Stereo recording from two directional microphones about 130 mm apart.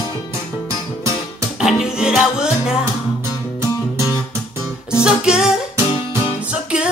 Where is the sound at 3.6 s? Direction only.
25° left (ahead or behind).